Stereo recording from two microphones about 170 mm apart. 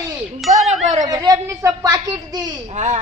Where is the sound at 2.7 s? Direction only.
45° right (ahead or behind).